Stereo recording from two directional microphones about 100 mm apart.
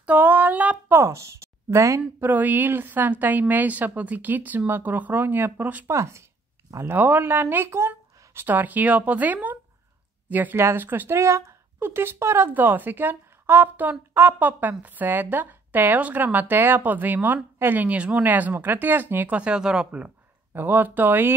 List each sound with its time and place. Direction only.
0.0 s speech: 15° right (ahead or behind)
2.0 s a woman's voice: 20° right (ahead or behind)
5.9 s a woman's voice: 30° right (ahead or behind)